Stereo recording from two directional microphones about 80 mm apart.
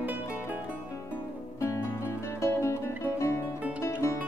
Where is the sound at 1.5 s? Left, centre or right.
Left.